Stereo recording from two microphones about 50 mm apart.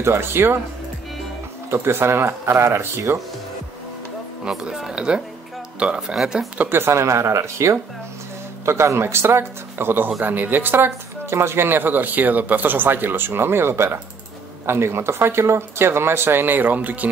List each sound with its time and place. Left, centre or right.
0.0 s speech: right
1.7 s speech: right
4.5 s speech: centre
6.7 s speech: right